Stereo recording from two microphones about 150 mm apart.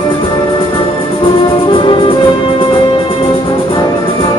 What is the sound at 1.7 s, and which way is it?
Music, 35° left (ahead or behind).